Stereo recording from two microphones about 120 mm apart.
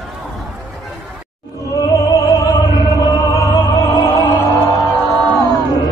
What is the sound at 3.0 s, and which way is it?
Music, 30° left (ahead or behind).